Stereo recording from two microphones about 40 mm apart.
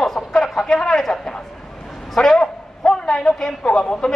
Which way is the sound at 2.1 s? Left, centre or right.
Centre.